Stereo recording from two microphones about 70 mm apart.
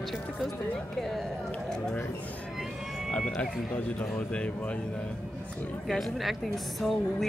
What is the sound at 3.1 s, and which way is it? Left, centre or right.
Speech, centre.